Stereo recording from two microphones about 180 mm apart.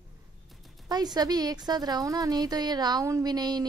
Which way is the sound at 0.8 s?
20° right (ahead or behind).